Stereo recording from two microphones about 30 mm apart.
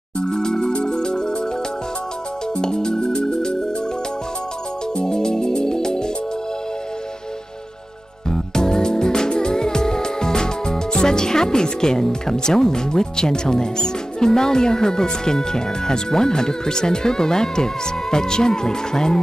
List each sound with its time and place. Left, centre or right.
0.2 s music: left
2.5 s music: left
5.0 s music: left
8.3 s music: left
12.1 s speech: centre